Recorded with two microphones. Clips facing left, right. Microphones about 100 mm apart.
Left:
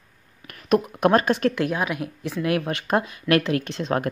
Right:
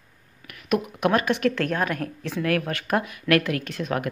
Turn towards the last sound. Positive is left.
turn(degrees=25)  # may be behind; listen again after turning